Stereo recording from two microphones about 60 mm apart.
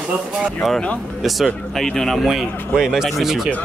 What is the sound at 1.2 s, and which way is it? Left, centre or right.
Speech, centre.